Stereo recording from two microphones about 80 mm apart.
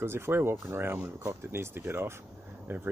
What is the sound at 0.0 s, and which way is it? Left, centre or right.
Speech, right.